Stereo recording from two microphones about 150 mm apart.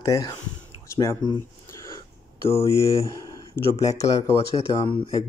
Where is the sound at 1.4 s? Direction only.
20° left (ahead or behind).